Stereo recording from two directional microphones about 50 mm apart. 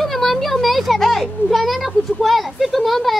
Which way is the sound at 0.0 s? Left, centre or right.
Centre.